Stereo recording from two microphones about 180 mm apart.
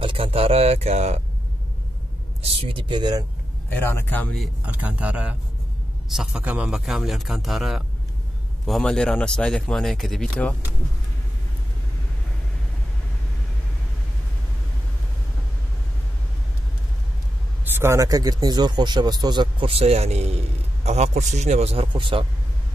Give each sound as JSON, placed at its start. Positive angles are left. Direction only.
{"t": 0.0, "sound": "a man's voice", "side_deg": -30}
{"t": 2.4, "sound": "a man's voice", "side_deg": -30}
{"t": 3.7, "sound": "a man's voice", "side_deg": 10}
{"t": 4.6, "sound": "a man's voice", "side_deg": -10}
{"t": 17.6, "sound": "a man's voice", "side_deg": -15}